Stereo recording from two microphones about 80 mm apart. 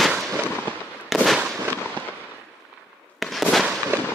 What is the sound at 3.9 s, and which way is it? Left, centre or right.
Fireworks, right.